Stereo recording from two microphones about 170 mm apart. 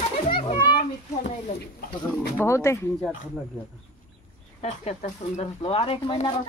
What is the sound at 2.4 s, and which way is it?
Speech, 15° left (ahead or behind).